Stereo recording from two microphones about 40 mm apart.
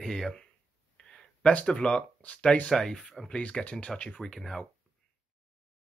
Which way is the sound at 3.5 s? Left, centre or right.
Left.